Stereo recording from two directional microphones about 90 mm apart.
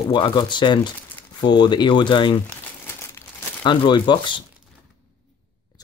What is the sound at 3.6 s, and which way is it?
Speech, 55° left (ahead or behind).